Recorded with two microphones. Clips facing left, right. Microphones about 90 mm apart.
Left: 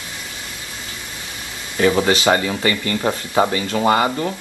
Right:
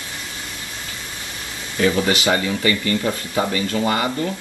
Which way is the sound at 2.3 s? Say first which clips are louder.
Left 1 dB; 40° left (ahead or behind).